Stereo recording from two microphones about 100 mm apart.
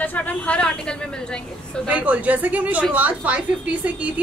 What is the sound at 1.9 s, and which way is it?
A woman's voice, 15° right (ahead or behind).